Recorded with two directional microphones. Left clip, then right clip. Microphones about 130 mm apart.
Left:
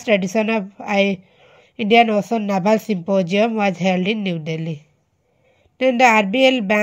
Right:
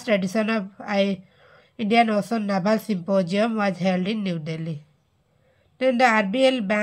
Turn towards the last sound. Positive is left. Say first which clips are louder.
# left 5 dB
turn(degrees=35)  # may be behind; listen again after turning